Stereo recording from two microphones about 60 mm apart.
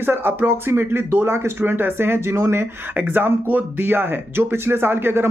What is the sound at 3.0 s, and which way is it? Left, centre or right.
Speech, right.